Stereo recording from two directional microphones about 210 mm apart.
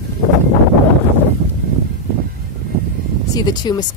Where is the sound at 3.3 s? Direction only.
20° left (ahead or behind).